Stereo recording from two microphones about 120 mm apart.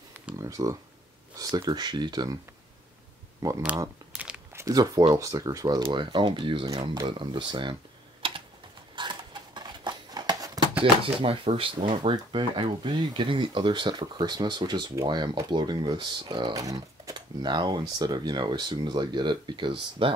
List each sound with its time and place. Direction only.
0.4 s speech: 30° right (ahead or behind)
3.4 s speech: 25° right (ahead or behind)
4.1 s crumpling: 10° right (ahead or behind)
4.6 s speech: 30° right (ahead or behind)
5.8 s speech: 45° right (ahead or behind)
8.2 s typing: 45° right (ahead or behind)
8.9 s a sound: 40° right (ahead or behind)
10.8 s speech: 50° right (ahead or behind)
16.6 s speech: 30° right (ahead or behind); by 20.2 s 45° right (ahead or behind)